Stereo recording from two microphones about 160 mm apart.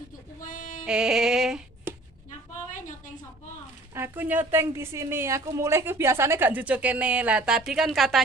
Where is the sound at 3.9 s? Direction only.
15° right (ahead or behind).